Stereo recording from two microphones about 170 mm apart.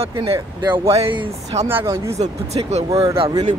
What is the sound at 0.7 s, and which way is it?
Speech, 35° right (ahead or behind).